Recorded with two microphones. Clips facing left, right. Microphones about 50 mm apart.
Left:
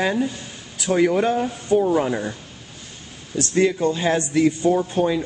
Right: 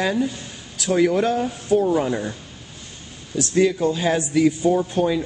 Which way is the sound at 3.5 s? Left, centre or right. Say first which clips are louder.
Right 1 dB; centre.